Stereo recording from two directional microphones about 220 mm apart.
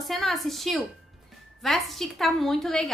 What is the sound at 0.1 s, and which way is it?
A woman's voice, centre (ahead or behind).